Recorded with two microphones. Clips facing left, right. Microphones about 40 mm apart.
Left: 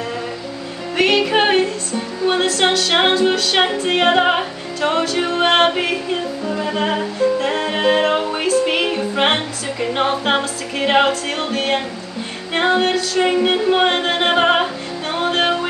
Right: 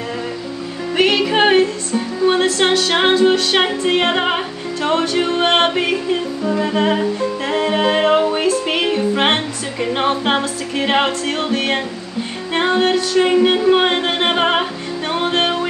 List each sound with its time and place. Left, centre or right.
0.9 s music: centre
10.0 s music: centre
15.1 s music: centre